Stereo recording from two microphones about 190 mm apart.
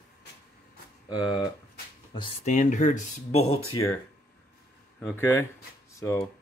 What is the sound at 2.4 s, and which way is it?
Speech, 40° left (ahead or behind).